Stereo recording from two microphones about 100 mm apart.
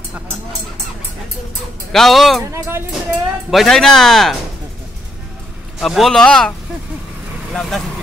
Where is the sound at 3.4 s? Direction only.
Centre (ahead or behind).